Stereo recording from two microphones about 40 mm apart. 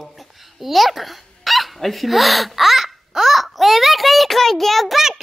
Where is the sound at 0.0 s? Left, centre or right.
Centre.